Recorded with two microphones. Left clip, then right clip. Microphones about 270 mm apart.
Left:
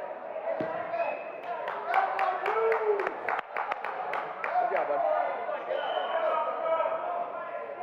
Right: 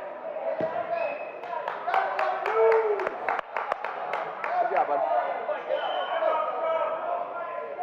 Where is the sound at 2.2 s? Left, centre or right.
Centre.